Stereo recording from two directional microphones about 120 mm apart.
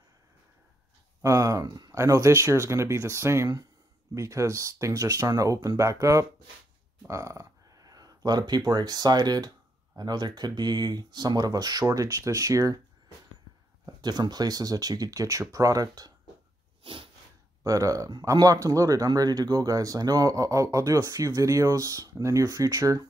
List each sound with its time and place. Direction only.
1.2 s speech: 25° right (ahead or behind)
13.8 s speech: 35° right (ahead or behind)
16.8 s a sound: 50° right (ahead or behind)
17.6 s speech: 30° right (ahead or behind)